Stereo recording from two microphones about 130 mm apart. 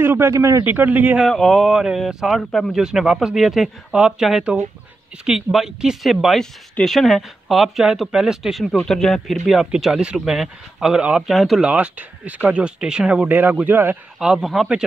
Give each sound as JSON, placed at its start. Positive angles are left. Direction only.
{"t": 0.0, "sound": "speech", "side_deg": -20}
{"t": 0.7, "sound": "speech", "side_deg": -15}
{"t": 1.2, "sound": "speech", "side_deg": 0}
{"t": 14.2, "sound": "speech", "side_deg": -5}